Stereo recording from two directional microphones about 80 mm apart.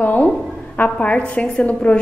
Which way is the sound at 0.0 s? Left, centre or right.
Centre.